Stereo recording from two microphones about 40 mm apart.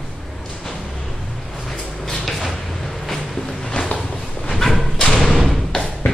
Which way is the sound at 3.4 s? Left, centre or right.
Centre.